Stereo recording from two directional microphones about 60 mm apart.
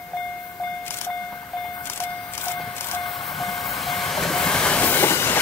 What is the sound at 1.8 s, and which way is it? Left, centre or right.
Vehicle, left.